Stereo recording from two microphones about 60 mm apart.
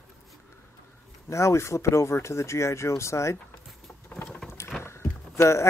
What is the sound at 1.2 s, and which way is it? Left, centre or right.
Speech, left.